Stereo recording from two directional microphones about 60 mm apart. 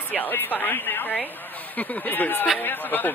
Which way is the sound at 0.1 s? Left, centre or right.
Left.